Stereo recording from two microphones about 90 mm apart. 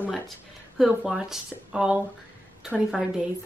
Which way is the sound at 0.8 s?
5° right (ahead or behind).